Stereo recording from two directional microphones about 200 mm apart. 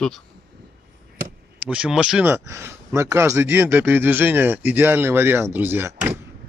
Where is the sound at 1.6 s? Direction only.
5° right (ahead or behind).